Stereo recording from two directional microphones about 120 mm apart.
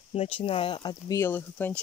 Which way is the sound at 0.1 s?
55° left (ahead or behind).